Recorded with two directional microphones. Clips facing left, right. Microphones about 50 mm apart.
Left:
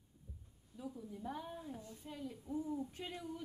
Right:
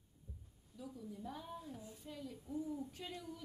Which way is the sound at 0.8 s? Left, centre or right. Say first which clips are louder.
Left 3 dB; left.